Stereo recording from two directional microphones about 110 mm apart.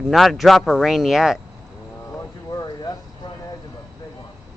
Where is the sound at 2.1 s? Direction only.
35° left (ahead or behind).